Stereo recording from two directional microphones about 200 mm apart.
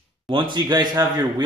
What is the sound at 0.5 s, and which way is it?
Speech, 20° right (ahead or behind).